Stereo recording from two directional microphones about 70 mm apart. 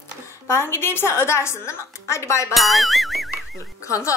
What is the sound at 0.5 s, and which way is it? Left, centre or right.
A woman's voice, left.